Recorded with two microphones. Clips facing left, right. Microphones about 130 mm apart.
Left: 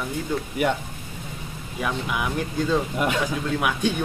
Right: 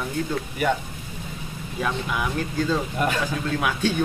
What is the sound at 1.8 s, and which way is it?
Speech, 15° left (ahead or behind).